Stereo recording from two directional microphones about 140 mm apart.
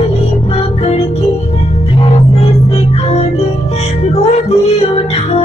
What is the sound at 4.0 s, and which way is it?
Music, 50° left (ahead or behind).